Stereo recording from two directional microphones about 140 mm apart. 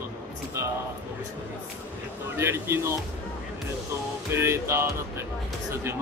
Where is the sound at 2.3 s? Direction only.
20° right (ahead or behind).